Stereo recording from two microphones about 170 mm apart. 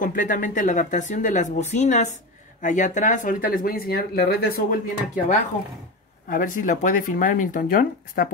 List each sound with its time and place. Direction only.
0.0 s speech: 50° left (ahead or behind)